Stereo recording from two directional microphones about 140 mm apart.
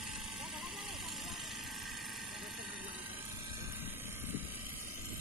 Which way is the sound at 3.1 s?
15° right (ahead or behind).